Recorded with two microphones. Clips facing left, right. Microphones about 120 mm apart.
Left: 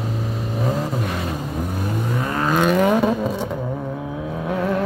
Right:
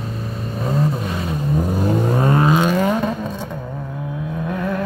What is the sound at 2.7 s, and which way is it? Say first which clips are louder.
Vehicle: left 2 dB; 5° left (ahead or behind).